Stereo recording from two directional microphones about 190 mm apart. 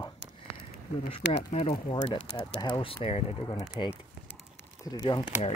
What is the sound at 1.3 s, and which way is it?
Speech, 35° left (ahead or behind).